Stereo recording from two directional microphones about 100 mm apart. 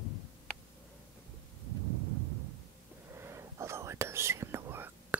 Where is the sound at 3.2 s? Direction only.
25° right (ahead or behind).